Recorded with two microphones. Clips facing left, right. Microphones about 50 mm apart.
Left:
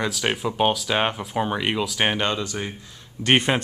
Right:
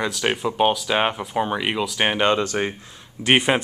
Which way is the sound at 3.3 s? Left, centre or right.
Centre.